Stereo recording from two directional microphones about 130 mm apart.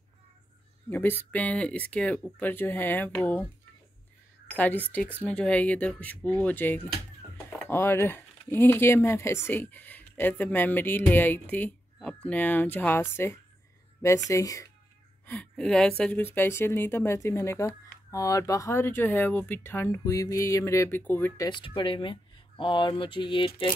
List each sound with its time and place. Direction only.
0.8 s speech: 15° left (ahead or behind)
4.5 s a woman's voice: 15° left (ahead or behind)
15.2 s speech: 10° left (ahead or behind)
21.5 s speech: 40° left (ahead or behind)